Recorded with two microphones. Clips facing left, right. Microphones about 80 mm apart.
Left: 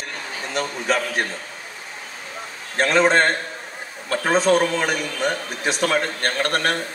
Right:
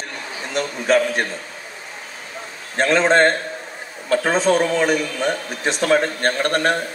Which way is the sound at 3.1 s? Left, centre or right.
Right.